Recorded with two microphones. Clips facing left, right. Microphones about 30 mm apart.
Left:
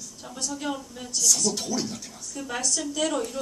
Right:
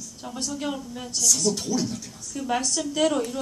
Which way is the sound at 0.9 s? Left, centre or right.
Centre.